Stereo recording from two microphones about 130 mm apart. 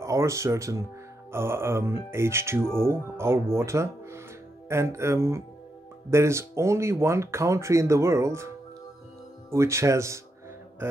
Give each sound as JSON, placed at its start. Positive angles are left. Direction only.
{"t": 0.0, "sound": "speech", "side_deg": -20}
{"t": 9.5, "sound": "speech", "side_deg": -20}
{"t": 10.8, "sound": "a sound", "side_deg": -15}